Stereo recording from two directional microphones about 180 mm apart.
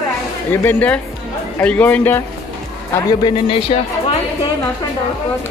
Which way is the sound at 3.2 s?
30° left (ahead or behind).